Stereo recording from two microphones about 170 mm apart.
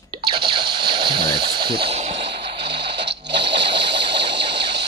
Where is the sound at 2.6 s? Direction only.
85° right.